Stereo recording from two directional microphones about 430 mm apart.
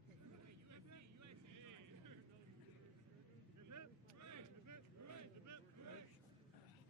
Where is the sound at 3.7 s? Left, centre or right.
Right.